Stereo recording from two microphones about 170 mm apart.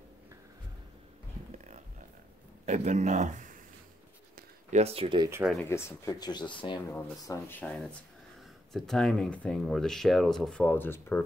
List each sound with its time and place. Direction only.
2.6 s speech: 45° right (ahead or behind)
4.4 s a sound: 45° right (ahead or behind)
5.7 s speech: 15° left (ahead or behind)
6.9 s speech: 15° left (ahead or behind)